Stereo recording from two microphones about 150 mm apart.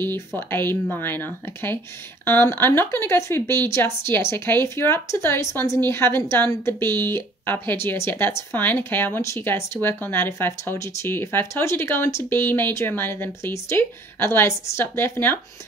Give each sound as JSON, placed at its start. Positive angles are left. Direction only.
{"t": 0.0, "sound": "speech", "side_deg": 15}